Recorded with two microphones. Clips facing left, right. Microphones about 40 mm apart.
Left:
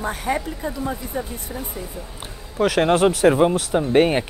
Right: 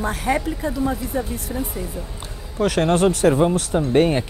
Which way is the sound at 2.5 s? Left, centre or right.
Centre.